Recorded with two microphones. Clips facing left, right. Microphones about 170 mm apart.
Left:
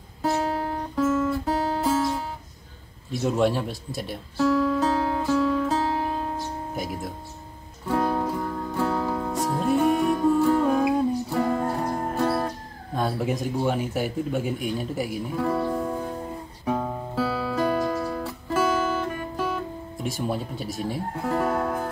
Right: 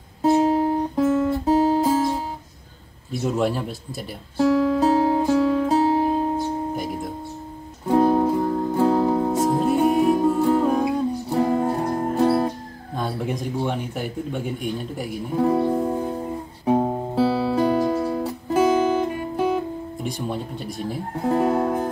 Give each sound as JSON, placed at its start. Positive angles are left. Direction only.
{"t": 0.2, "sound": "music", "side_deg": -20}
{"t": 1.1, "sound": "guitar", "side_deg": -35}
{"t": 1.5, "sound": "music", "side_deg": -20}
{"t": 3.1, "sound": "a man's voice", "side_deg": 0}
{"t": 4.4, "sound": "music", "side_deg": -30}
{"t": 6.7, "sound": "music", "side_deg": 0}
{"t": 7.9, "sound": "music", "side_deg": -25}
{"t": 12.9, "sound": "a man's voice", "side_deg": 0}
{"t": 15.3, "sound": "music", "side_deg": -25}
{"t": 20.0, "sound": "a man's voice", "side_deg": 0}
{"t": 21.2, "sound": "music", "side_deg": -25}